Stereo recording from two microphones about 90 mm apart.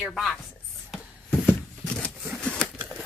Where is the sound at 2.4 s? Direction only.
10° left (ahead or behind).